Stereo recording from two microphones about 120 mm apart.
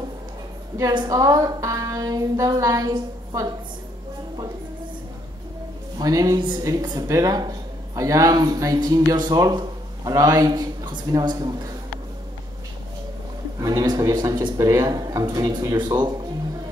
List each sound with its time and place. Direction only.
0.9 s speech: 30° right (ahead or behind)
5.9 s speech: 30° right (ahead or behind)
13.6 s speech: 30° right (ahead or behind)